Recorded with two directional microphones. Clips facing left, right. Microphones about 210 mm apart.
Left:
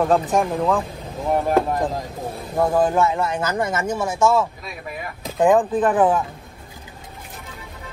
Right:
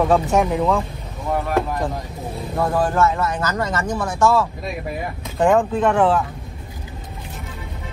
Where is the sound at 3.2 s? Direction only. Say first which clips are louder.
Even; 25° left (ahead or behind).